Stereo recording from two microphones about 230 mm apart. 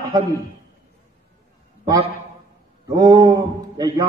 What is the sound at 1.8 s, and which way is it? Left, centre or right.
A man's voice, centre.